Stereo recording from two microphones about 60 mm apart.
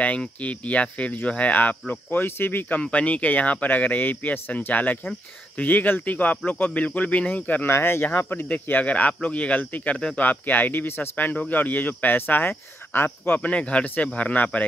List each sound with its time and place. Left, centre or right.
0.0 s speech: left
2.8 s speech: left
7.7 s speech: left
13.5 s speech: left